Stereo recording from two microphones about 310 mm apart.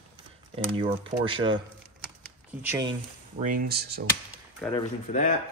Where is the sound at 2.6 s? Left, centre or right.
Centre.